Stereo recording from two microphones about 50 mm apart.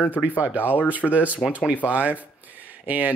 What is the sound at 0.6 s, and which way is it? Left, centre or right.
Speech, left.